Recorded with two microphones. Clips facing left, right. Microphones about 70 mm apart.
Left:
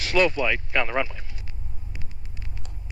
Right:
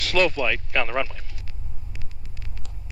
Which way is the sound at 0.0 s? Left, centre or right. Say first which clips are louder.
Even; centre.